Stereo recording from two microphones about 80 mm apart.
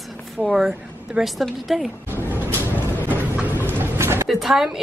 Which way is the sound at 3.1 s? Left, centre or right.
Right.